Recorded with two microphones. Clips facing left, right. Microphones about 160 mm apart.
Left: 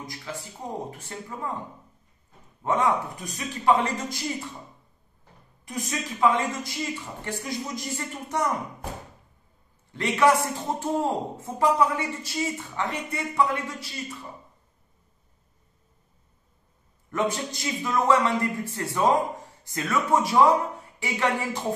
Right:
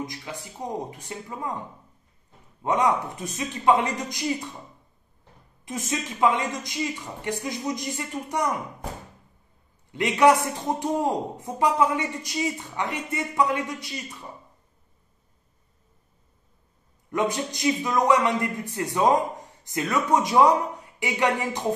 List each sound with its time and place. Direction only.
0.0 s speech: 20° right (ahead or behind)
2.6 s speech: 20° right (ahead or behind)
5.7 s a man's voice: 25° right (ahead or behind)
9.9 s a man's voice: 15° right (ahead or behind)
17.1 s a man's voice: 15° right (ahead or behind)